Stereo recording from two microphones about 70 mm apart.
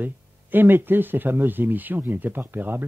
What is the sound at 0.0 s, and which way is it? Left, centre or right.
Speech, right.